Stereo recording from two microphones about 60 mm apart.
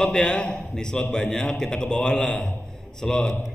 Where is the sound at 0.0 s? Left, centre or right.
Centre.